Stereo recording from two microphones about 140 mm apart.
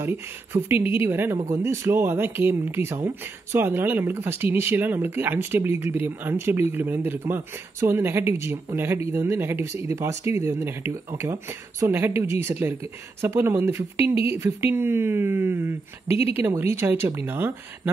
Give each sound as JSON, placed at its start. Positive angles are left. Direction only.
{"t": 0.0, "sound": "speech", "side_deg": -15}